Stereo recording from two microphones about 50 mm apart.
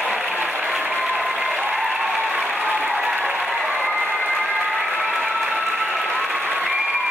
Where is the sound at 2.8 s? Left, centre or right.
Right.